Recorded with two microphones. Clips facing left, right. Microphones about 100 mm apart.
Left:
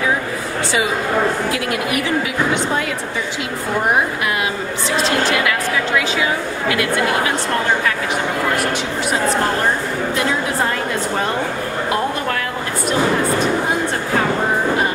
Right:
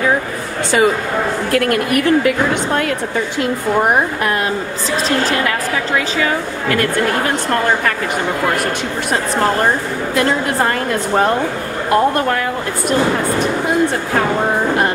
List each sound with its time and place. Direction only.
1.5 s speech: 55° right (ahead or behind)
5.4 s a woman's voice: 40° right (ahead or behind)